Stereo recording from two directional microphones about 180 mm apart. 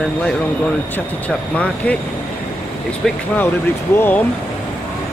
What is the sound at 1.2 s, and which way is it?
Speech, 10° left (ahead or behind).